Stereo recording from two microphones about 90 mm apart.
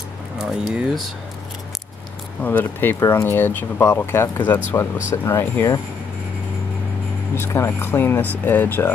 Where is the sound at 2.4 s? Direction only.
20° left (ahead or behind).